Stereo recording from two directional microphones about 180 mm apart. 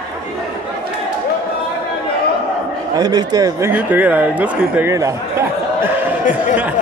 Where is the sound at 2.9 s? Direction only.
20° right (ahead or behind).